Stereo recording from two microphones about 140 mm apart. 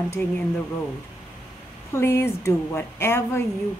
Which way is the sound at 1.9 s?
20° left (ahead or behind).